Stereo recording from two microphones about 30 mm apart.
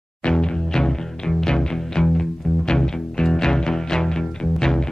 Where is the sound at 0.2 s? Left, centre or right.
Left.